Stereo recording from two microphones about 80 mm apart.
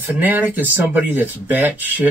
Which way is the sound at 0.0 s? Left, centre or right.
Right.